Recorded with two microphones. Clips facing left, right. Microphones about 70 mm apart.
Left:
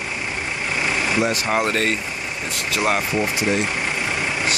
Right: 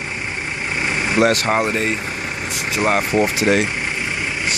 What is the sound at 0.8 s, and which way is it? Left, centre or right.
Vehicle, right.